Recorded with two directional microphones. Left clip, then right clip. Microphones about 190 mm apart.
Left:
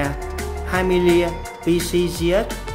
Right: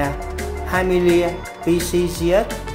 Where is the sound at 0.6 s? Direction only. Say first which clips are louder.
Right 1 dB; 20° left (ahead or behind).